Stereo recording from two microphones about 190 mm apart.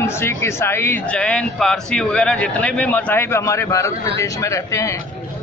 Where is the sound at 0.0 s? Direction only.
15° left (ahead or behind).